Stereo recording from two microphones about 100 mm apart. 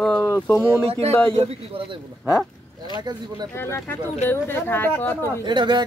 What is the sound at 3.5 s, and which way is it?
Speech, 25° left (ahead or behind).